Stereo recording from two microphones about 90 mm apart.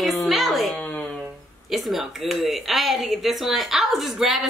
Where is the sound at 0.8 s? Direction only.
20° left (ahead or behind).